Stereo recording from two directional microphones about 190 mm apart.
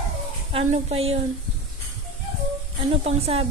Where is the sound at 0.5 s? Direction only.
35° right (ahead or behind).